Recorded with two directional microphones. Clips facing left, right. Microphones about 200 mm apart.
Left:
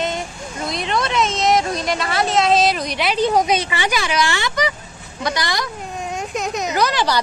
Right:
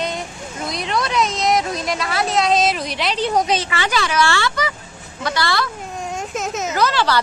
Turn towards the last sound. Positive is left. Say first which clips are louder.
# even
turn(degrees=15)  # may be behind; listen again after turning